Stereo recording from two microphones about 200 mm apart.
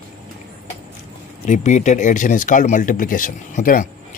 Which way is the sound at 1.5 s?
35° left (ahead or behind).